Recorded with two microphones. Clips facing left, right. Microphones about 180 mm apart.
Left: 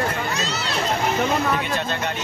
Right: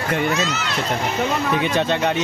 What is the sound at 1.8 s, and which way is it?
Speech, 80° right.